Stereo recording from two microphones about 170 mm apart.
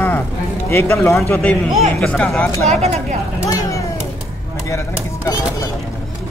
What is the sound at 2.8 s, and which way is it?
Speech, 40° right (ahead or behind).